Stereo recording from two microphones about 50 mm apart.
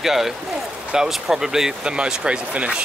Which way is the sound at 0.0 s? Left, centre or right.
Centre.